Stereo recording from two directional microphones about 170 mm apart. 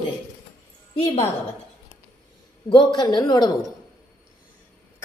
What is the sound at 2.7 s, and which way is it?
Speech, 25° left (ahead or behind).